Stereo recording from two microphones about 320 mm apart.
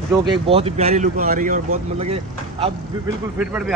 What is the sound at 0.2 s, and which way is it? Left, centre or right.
Speech, centre.